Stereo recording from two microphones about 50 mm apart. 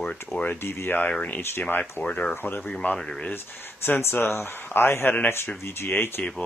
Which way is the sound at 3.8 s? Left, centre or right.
Left.